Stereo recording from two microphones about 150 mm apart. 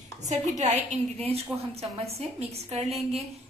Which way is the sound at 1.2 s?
40° right (ahead or behind).